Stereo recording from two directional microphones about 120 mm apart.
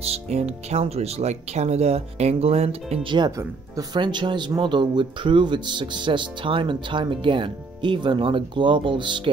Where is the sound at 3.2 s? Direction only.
30° right (ahead or behind).